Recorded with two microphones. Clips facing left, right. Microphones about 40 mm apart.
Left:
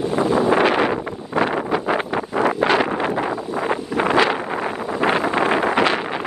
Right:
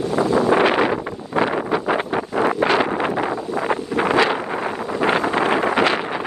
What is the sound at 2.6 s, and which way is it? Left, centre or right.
Wind noise, left.